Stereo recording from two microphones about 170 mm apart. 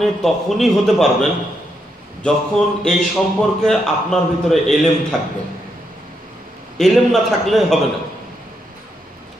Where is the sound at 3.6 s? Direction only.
Centre (ahead or behind).